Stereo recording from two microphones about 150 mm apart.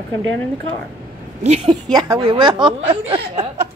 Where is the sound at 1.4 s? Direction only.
45° right (ahead or behind).